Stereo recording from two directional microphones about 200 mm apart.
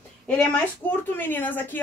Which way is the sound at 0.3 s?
10° left (ahead or behind).